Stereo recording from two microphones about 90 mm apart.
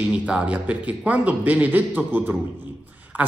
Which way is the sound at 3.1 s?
20° right (ahead or behind).